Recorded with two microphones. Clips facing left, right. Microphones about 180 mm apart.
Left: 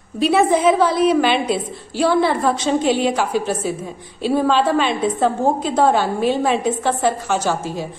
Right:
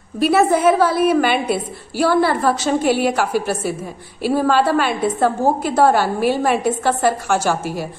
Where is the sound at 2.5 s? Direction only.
5° right (ahead or behind).